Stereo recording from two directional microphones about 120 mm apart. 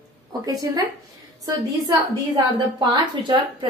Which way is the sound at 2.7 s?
40° right (ahead or behind).